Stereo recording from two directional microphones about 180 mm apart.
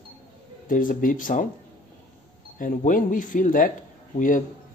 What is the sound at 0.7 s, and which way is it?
Speech, 50° left (ahead or behind).